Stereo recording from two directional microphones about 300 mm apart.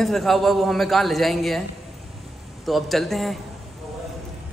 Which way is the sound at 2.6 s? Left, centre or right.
Centre.